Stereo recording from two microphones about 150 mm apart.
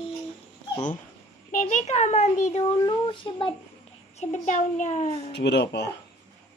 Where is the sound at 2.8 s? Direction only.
35° left (ahead or behind).